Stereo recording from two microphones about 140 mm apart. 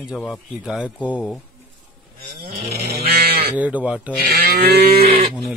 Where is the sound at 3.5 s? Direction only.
10° right (ahead or behind).